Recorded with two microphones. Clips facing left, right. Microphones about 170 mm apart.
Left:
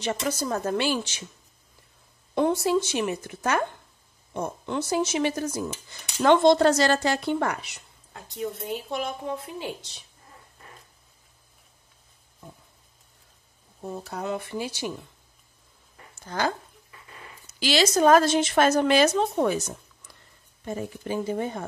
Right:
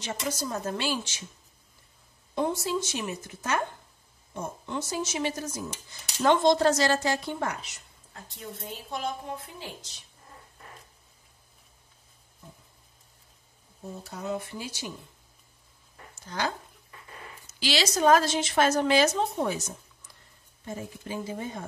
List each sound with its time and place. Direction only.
0.0 s a woman's voice: 60° left (ahead or behind)
2.3 s a woman's voice: 65° left (ahead or behind)
14.0 s speech: 75° left (ahead or behind)
16.3 s a woman's voice: 50° left (ahead or behind)
20.6 s a woman's voice: 60° left (ahead or behind)